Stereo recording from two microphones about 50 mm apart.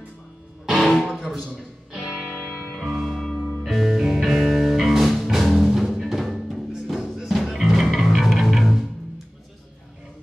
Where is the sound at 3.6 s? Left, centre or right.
Centre.